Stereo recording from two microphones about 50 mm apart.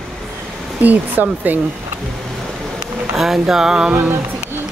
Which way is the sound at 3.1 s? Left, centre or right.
Centre.